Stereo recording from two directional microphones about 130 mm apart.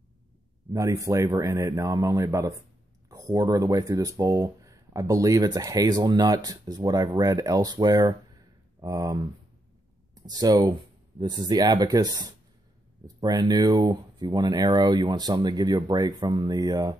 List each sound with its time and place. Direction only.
0.7 s speech: 25° right (ahead or behind)